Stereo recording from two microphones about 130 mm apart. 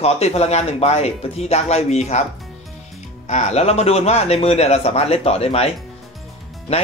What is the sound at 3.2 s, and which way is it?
Speech, 60° left (ahead or behind).